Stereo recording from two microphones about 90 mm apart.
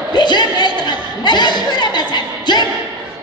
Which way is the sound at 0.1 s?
55° left (ahead or behind).